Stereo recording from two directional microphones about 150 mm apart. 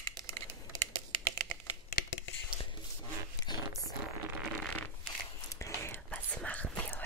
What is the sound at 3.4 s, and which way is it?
Whispering, 25° left (ahead or behind).